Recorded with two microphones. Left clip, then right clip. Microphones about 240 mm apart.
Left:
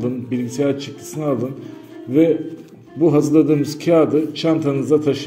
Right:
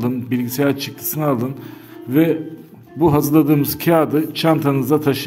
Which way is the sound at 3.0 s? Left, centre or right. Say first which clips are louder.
Even; right.